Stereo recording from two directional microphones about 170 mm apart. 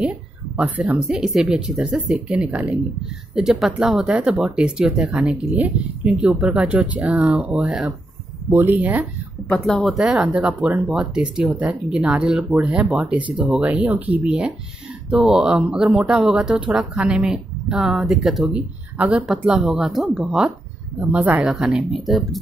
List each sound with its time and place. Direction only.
0.6 s speech: 10° right (ahead or behind)
9.5 s speech: 5° left (ahead or behind)